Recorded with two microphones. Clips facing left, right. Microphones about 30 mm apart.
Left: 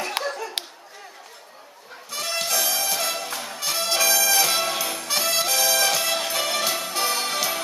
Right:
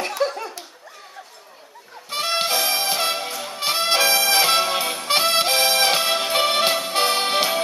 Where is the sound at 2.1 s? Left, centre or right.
Right.